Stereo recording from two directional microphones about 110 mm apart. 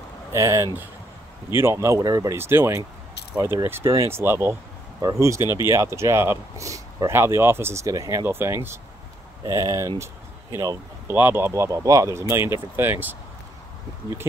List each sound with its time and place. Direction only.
0.3 s speech: 25° right (ahead or behind)
11.1 s speech: 20° right (ahead or behind)